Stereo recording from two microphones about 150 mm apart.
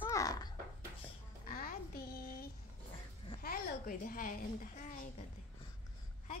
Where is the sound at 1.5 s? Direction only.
70° left (ahead or behind).